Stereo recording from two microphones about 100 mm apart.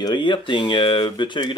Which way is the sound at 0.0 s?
50° left (ahead or behind).